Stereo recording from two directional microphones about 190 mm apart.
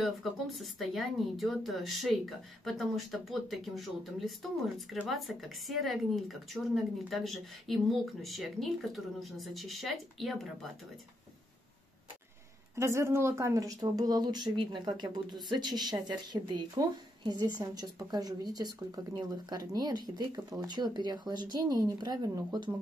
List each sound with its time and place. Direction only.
0.0 s speech: centre (ahead or behind)
12.7 s speech: 15° right (ahead or behind)